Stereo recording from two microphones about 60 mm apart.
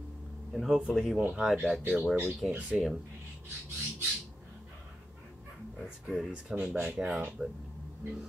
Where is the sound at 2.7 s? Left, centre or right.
Centre.